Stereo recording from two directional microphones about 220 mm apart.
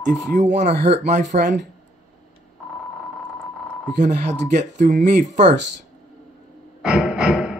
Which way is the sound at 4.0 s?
35° right (ahead or behind).